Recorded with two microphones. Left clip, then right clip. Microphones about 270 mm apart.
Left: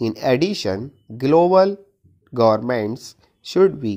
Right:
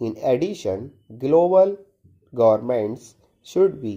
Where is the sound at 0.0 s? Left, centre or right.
Left.